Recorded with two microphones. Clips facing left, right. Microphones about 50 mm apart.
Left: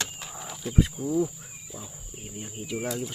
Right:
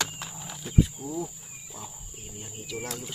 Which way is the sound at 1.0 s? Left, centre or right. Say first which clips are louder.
Left 8 dB; centre.